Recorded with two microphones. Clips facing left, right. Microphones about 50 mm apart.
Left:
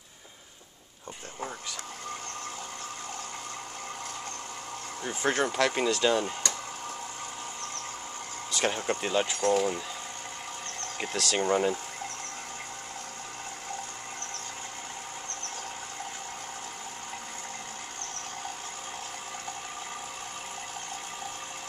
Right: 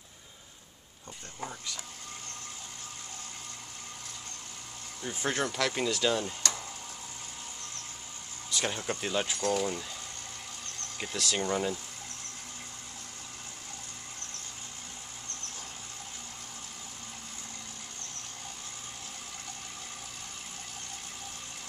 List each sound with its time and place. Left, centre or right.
5.0 s speech: centre
8.5 s speech: left
8.8 s speech: centre
11.3 s speech: left